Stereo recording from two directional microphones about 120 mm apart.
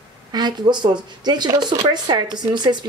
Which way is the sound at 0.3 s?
35° right (ahead or behind).